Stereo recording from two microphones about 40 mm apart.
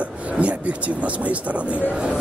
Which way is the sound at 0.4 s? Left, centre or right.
Right.